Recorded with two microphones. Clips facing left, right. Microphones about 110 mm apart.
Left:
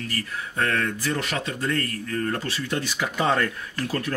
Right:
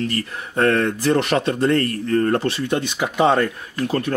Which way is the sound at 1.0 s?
65° right (ahead or behind).